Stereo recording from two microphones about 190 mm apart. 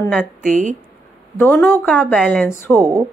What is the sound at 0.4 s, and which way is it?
Speech, 45° right (ahead or behind).